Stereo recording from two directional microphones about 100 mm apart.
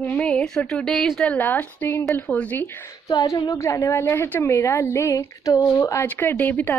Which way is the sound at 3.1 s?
45° left (ahead or behind).